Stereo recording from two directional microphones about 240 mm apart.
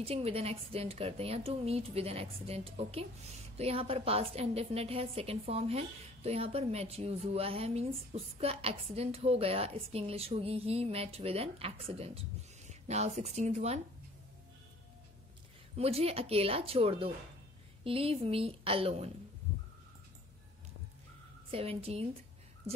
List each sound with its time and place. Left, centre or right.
0.0 s a woman's voice: right
15.7 s a woman's voice: right
21.5 s a woman's voice: right